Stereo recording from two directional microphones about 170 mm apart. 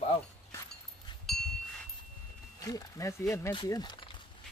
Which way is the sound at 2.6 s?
20° left (ahead or behind).